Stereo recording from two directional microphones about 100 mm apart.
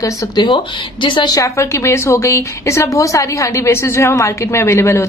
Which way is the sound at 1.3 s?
30° left (ahead or behind).